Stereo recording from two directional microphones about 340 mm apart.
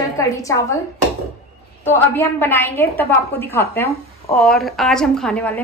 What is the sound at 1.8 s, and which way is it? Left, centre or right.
A woman's voice, centre.